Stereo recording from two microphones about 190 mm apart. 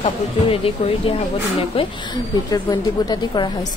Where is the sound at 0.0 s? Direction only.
30° left (ahead or behind).